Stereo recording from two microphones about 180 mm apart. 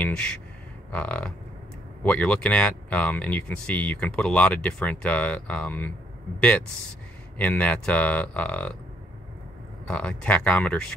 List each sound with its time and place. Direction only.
0.0 s a sound: 5° left (ahead or behind)
0.9 s speech: 5° left (ahead or behind)
7.3 s speech: 10° left (ahead or behind)
9.8 s speech: 5° left (ahead or behind)